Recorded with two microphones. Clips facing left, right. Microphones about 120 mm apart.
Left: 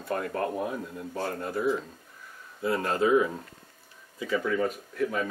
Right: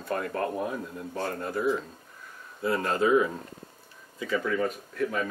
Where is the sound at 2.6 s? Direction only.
25° left (ahead or behind).